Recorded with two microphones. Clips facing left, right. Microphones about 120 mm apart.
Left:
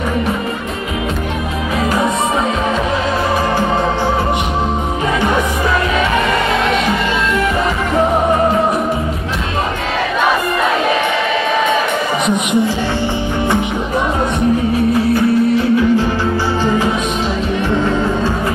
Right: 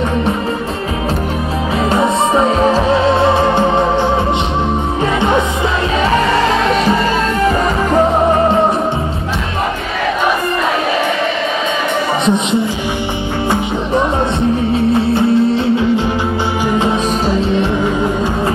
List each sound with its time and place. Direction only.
1.9 s music: 30° right (ahead or behind)
15.0 s music: 25° right (ahead or behind)
16.6 s music: 20° right (ahead or behind)